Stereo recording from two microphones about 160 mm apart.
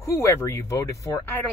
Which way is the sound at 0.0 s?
20° left (ahead or behind).